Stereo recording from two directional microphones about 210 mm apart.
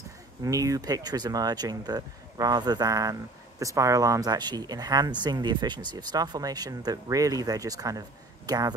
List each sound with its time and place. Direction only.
0.4 s speech: 15° right (ahead or behind)